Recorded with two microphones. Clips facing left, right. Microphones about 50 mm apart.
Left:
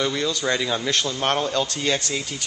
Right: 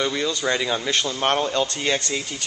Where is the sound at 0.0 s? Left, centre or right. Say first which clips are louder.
Even; centre.